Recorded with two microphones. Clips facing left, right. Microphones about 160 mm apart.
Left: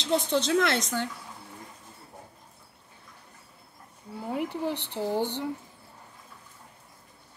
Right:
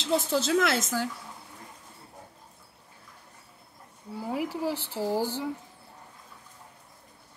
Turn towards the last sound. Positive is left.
turn(degrees=-5)  # may be behind; listen again after turning